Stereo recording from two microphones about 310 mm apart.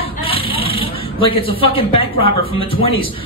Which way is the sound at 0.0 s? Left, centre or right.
Centre.